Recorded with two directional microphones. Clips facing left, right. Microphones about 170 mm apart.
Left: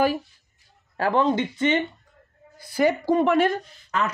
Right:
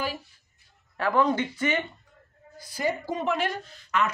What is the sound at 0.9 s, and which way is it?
Speech, 35° left (ahead or behind).